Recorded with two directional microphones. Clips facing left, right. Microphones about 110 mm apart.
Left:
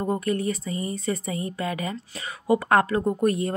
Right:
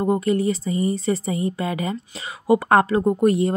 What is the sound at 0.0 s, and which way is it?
Speech, 20° right (ahead or behind).